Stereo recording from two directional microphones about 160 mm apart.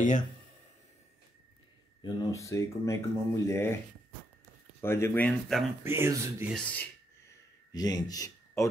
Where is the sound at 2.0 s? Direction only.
20° left (ahead or behind).